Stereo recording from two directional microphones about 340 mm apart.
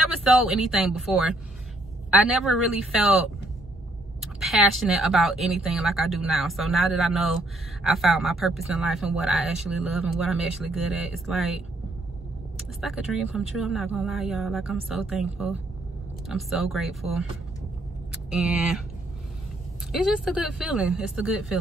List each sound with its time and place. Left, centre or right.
0.2 s speech: centre
12.8 s speech: centre
18.3 s speech: centre
19.9 s speech: centre